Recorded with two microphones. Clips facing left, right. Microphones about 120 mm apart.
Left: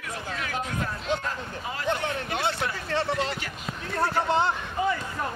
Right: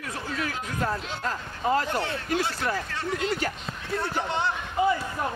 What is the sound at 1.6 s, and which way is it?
Speech, 45° right (ahead or behind).